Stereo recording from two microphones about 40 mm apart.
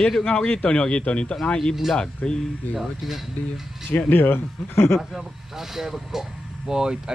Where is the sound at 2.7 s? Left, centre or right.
Centre.